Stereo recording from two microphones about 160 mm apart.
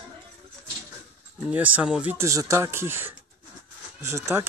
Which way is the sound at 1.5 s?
10° right (ahead or behind).